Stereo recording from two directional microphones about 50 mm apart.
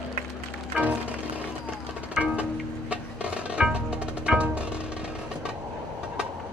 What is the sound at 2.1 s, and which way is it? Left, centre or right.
Music, right.